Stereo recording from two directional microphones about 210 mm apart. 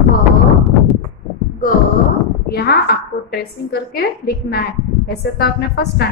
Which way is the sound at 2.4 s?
50° left (ahead or behind).